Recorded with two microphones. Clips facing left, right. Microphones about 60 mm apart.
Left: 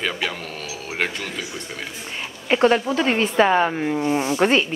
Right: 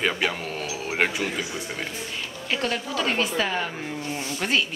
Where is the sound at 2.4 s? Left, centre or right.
Left.